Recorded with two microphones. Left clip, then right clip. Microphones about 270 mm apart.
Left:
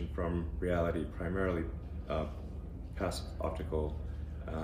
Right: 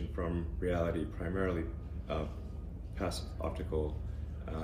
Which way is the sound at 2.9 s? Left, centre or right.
Centre.